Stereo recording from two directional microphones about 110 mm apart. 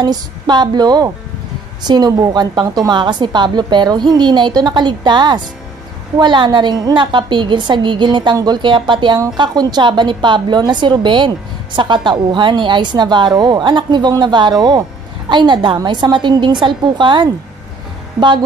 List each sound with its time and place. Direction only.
0.0 s a woman's voice: 40° right (ahead or behind)